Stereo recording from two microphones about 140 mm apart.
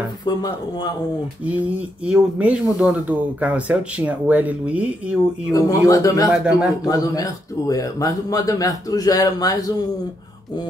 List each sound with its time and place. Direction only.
0.2 s a man's voice: 30° left (ahead or behind)
2.0 s speech: 10° right (ahead or behind)
5.5 s a man's voice: 25° left (ahead or behind)
6.3 s a man's voice: 5° right (ahead or behind)
6.9 s a man's voice: 25° left (ahead or behind)